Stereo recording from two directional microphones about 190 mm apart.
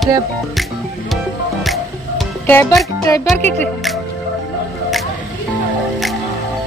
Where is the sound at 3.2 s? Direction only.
10° left (ahead or behind).